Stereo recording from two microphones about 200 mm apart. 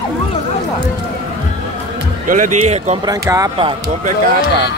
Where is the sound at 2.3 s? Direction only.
40° right (ahead or behind).